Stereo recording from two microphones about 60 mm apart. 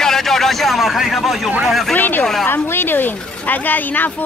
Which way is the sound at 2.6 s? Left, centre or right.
Left.